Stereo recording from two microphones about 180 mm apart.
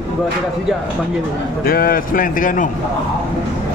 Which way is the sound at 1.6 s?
55° left (ahead or behind).